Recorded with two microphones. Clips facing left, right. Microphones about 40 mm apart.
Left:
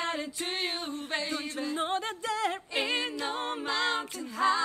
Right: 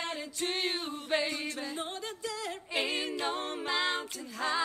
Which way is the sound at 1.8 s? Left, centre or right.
Left.